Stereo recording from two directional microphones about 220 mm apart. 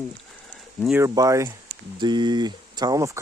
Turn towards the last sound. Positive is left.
turn(degrees=-15)  # may be behind; listen again after turning